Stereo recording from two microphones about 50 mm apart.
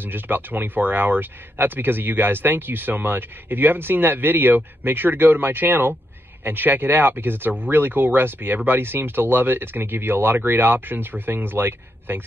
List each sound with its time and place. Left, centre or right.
0.0 s speech: right